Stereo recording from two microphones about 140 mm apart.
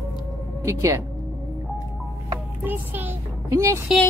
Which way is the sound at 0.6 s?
20° right (ahead or behind).